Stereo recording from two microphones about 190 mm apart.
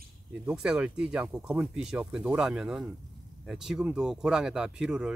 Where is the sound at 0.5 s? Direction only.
5° right (ahead or behind).